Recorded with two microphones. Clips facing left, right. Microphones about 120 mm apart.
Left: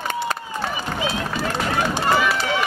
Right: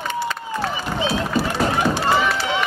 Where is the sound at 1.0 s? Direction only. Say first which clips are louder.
Right 5 dB; 30° right (ahead or behind).